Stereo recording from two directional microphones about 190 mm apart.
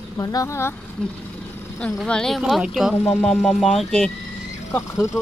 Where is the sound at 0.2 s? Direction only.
20° left (ahead or behind).